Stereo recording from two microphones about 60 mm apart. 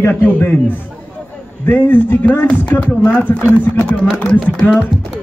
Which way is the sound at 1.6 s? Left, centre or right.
Left.